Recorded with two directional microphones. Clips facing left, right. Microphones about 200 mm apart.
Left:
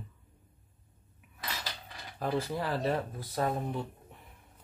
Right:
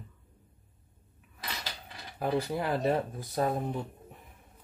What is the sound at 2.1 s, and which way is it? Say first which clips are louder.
Speech: right 2 dB; 15° right (ahead or behind).